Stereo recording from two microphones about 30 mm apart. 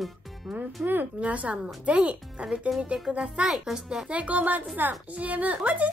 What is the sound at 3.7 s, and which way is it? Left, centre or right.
Speech, centre.